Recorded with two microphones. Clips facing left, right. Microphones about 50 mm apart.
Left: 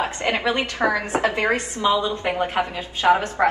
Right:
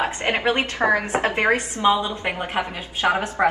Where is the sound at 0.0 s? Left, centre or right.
Right.